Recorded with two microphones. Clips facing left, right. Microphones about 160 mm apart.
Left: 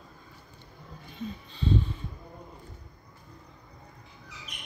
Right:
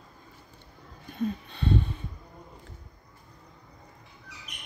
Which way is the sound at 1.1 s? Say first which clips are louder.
Right 8 dB; 60° right (ahead or behind).